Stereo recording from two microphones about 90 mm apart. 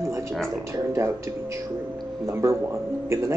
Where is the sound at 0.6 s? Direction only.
35° right (ahead or behind).